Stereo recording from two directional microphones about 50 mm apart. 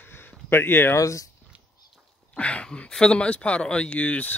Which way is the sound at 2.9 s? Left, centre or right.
Centre.